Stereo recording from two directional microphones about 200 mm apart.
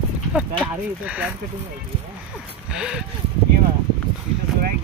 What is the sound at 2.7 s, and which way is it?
Speech, 5° right (ahead or behind).